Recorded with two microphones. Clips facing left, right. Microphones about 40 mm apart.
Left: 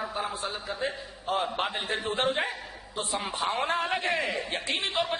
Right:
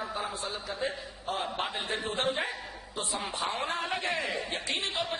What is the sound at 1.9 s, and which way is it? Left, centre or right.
A man's voice, left.